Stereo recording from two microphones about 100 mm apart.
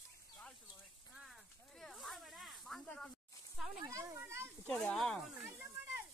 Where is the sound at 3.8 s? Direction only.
30° right (ahead or behind).